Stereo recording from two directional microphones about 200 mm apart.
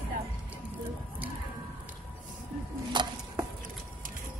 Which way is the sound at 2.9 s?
20° right (ahead or behind).